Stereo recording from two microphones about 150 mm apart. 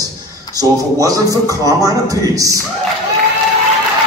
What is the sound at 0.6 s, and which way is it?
Speech, 25° right (ahead or behind).